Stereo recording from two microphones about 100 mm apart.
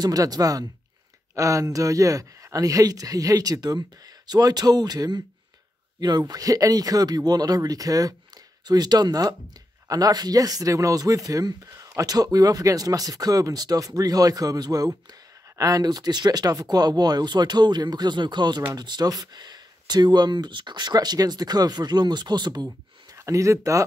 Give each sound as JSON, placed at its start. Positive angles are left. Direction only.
{"t": 0.0, "sound": "speech", "side_deg": -40}
{"t": 23.1, "sound": "speech", "side_deg": -30}